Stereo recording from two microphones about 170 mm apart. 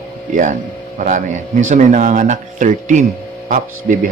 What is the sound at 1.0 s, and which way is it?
A man's voice, 50° right (ahead or behind).